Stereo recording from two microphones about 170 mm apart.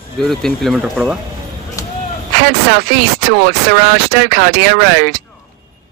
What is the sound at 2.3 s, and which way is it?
Speech, 65° right (ahead or behind).